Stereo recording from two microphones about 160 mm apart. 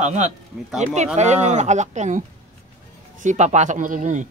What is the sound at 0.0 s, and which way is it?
Speech, 45° right (ahead or behind).